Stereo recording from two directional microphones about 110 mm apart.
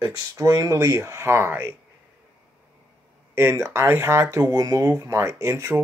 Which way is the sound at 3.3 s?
25° right (ahead or behind).